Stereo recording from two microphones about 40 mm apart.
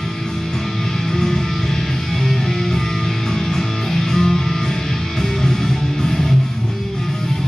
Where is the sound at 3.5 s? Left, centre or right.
Centre.